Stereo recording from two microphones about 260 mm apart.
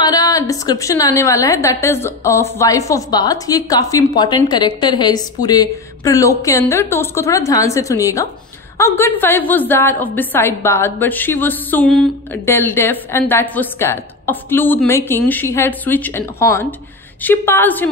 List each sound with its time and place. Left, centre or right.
0.0 s a woman's voice: centre